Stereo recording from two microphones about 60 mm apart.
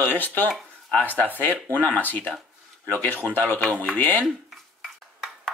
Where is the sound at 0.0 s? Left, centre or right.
Left.